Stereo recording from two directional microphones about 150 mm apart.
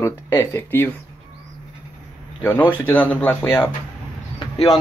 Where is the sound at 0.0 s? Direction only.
20° left (ahead or behind).